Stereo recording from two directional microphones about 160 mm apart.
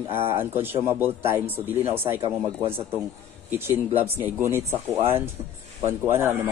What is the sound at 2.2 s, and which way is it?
Speech, 35° right (ahead or behind).